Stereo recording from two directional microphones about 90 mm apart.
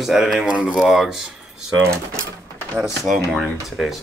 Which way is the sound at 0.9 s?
Centre (ahead or behind).